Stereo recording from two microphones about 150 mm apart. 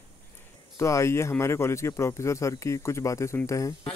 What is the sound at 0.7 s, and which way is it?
Speech, 20° left (ahead or behind).